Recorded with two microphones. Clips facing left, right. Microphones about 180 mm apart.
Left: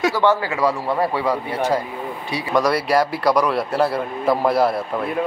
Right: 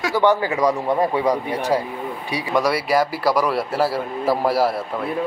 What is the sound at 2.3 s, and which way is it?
Speech, 5° right (ahead or behind).